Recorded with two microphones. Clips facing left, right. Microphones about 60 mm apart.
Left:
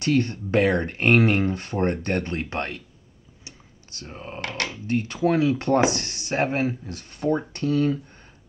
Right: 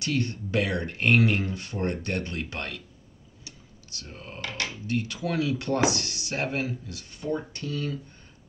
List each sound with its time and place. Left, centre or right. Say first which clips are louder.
0.0 s speech: left 6 dB; left
3.4 s computer keyboard: left 2 dB; left
4.4 s speech: left 4 dB; left
4.8 s speech: left 8 dB; left